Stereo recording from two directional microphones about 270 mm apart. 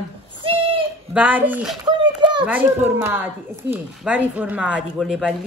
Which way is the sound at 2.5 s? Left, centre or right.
Centre.